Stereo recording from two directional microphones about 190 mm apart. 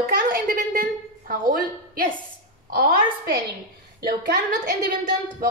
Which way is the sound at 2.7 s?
50° right (ahead or behind).